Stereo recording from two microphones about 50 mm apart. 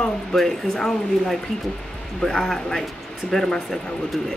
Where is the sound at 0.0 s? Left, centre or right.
Centre.